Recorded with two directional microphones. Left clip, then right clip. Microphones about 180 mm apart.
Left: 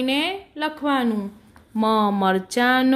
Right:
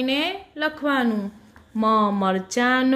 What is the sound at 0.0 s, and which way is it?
Speech, 15° left (ahead or behind).